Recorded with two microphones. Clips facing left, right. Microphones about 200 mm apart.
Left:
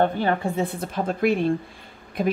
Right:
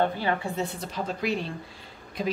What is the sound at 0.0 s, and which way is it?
A woman's voice, 50° left (ahead or behind).